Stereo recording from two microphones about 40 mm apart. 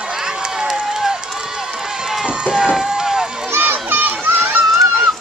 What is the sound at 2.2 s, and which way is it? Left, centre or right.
Run, right.